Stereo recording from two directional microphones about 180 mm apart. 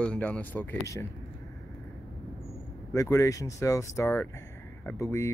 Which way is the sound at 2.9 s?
15° left (ahead or behind).